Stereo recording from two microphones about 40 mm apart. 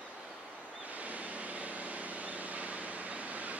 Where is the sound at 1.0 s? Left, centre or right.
Right.